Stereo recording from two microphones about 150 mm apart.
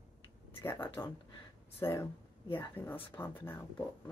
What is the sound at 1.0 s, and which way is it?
Speech, 10° left (ahead or behind).